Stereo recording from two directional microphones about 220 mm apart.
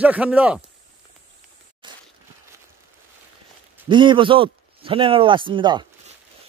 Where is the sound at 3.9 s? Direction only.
20° right (ahead or behind).